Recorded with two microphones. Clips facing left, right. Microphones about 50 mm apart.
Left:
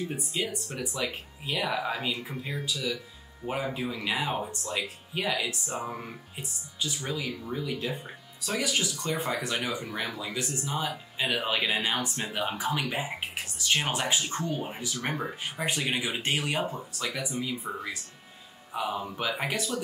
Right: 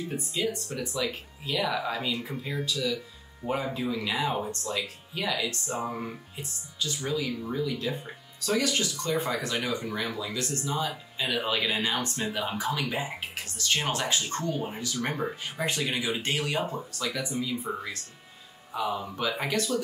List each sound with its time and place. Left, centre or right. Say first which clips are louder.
0.1 s speech: right 2 dB; centre
5.7 s speech: right 2 dB; centre
6.3 s speech: even; centre
9.6 s speech: right 2 dB; centre
9.9 s speech: right 1 dB; centre
15.1 s speech: right 1 dB; centre
15.6 s speech: right 1 dB; centre
17.7 s speech: right 2 dB; centre
18.8 s speech: right 1 dB; centre